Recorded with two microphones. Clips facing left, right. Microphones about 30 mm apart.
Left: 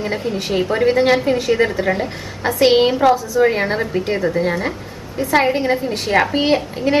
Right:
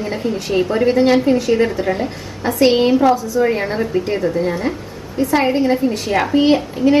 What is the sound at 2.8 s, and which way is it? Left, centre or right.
Speech, centre.